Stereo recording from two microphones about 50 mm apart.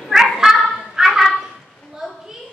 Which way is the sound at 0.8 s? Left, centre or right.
Centre.